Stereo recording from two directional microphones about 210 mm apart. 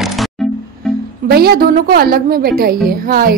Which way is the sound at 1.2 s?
45° right (ahead or behind).